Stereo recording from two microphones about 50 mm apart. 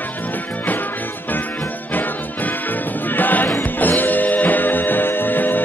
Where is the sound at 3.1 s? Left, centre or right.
Left.